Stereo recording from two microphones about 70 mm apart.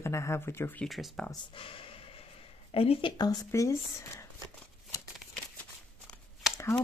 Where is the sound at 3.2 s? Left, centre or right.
Left.